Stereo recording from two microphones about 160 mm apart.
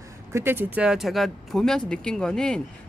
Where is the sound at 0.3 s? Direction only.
15° right (ahead or behind).